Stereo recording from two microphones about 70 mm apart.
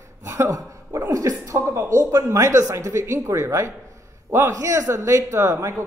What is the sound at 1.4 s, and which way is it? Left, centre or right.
A man's voice, right.